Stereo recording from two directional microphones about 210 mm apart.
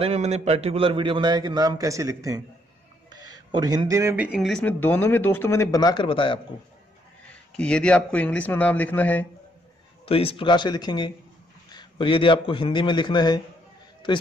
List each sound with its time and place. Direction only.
0.0 s a man's voice: 30° right (ahead or behind); by 6.4 s 25° left (ahead or behind)
7.5 s speech: 5° left (ahead or behind)
10.0 s a man's voice: 25° left (ahead or behind)